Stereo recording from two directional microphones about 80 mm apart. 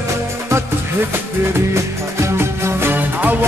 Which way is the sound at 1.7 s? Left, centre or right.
Right.